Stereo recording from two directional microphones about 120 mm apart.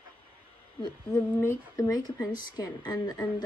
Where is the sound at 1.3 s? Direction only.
20° left (ahead or behind).